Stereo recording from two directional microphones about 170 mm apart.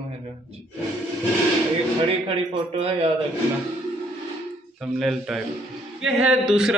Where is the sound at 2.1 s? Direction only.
35° right (ahead or behind).